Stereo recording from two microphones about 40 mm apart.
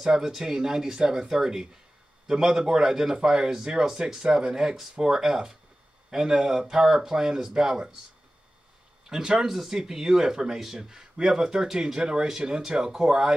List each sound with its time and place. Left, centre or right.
0.0 s speech: centre
9.1 s speech: centre
9.5 s speech: centre
9.8 s speech: centre